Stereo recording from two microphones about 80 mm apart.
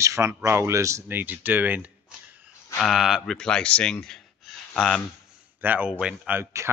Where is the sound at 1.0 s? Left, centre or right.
Right.